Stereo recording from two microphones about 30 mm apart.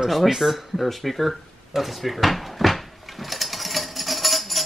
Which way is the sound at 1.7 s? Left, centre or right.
Centre.